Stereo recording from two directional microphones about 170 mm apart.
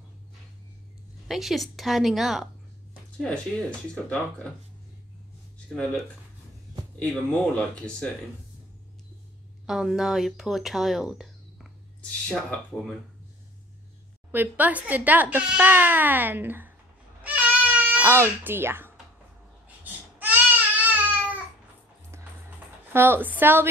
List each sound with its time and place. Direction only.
1.2 s speech: centre (ahead or behind)
3.9 s speech: 5° left (ahead or behind)
5.7 s speech: centre (ahead or behind)
9.7 s speech: 5° right (ahead or behind)
14.3 s a child's voice: 10° right (ahead or behind)
17.2 s baby cry: 10° right (ahead or behind)
19.8 s babbling: 10° right (ahead or behind)
22.1 s music: 15° right (ahead or behind)
22.9 s a child's voice: 15° right (ahead or behind)